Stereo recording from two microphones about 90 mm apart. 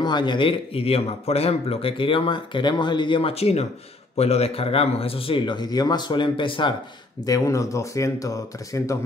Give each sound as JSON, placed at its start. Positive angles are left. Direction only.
{"t": 0.0, "sound": "a man's voice", "side_deg": 55}
{"t": 4.6, "sound": "speech", "side_deg": 90}
{"t": 7.2, "sound": "speech", "side_deg": 40}